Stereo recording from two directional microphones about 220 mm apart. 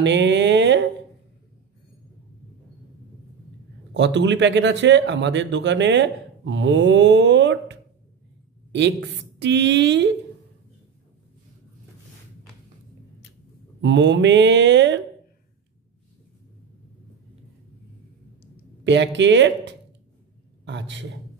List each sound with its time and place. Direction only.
0.0 s a sound: 55° right (ahead or behind)
3.9 s speech: 55° right (ahead or behind)
9.4 s speech: 55° right (ahead or behind)
13.7 s speech: 55° right (ahead or behind)
18.9 s speech: 55° right (ahead or behind)